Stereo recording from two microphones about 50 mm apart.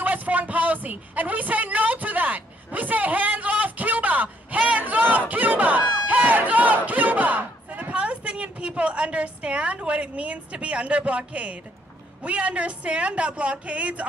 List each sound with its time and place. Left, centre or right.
0.0 s a sound: right
5.3 s battle cry: right
12.2 s a woman's voice: right